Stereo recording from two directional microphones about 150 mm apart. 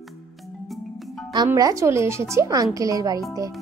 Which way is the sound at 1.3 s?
25° right (ahead or behind).